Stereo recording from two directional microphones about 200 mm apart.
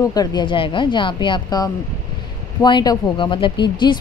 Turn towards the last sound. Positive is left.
turn(degrees=25)  # may be behind; listen again after turning